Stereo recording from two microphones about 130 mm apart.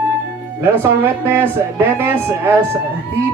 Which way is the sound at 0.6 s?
15° right (ahead or behind).